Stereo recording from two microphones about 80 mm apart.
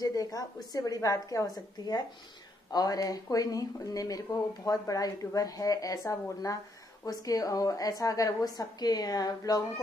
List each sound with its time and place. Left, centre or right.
0.0 s speech: left